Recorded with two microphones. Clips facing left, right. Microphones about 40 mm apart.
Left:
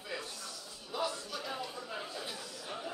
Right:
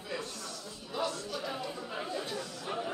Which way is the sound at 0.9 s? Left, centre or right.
Centre.